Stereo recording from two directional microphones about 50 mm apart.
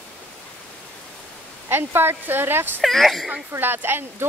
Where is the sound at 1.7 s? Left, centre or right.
Right.